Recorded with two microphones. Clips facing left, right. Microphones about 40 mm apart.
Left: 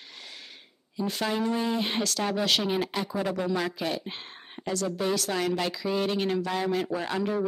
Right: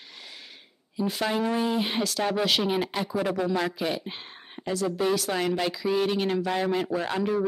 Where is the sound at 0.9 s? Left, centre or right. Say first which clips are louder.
Right 2 dB; centre.